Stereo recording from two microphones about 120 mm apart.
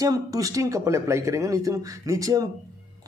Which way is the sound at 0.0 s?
30° right (ahead or behind).